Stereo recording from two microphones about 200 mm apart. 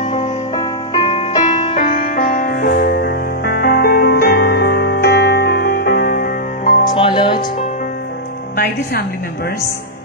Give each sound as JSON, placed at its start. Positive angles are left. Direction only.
{"t": 0.0, "sound": "music", "side_deg": 30}
{"t": 2.1, "sound": "music", "side_deg": 50}
{"t": 6.9, "sound": "music", "side_deg": 25}